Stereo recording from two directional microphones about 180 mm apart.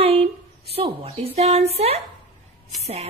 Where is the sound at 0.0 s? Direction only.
35° right (ahead or behind).